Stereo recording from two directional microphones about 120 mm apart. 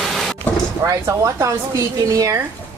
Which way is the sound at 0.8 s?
25° right (ahead or behind).